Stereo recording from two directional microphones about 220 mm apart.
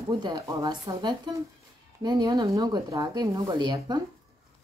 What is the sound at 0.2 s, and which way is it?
Speech, 20° right (ahead or behind).